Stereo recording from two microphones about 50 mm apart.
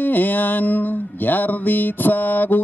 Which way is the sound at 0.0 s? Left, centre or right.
Left.